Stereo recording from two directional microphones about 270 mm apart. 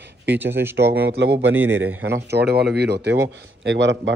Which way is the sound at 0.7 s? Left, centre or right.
Right.